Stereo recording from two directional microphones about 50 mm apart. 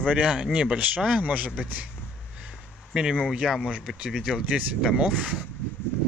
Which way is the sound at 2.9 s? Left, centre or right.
Centre.